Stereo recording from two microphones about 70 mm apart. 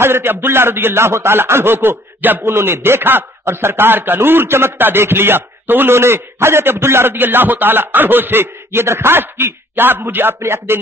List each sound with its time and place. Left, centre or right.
0.0 s a man's voice: right